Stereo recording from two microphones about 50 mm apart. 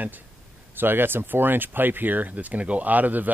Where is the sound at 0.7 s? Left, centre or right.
Right.